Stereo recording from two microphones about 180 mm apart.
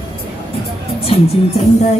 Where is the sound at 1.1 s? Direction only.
35° left (ahead or behind).